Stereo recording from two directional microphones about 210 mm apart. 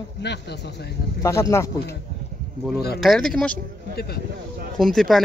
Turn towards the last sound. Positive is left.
turn(degrees=0)  # may be behind; listen again after turning